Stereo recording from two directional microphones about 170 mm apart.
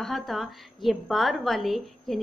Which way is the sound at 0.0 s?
Centre (ahead or behind).